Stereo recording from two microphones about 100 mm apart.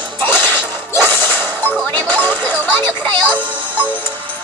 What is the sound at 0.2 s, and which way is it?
Music, 20° left (ahead or behind).